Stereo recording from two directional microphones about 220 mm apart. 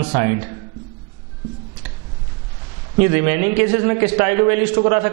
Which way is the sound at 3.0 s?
15° right (ahead or behind).